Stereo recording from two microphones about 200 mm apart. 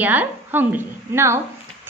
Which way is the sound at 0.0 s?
10° right (ahead or behind).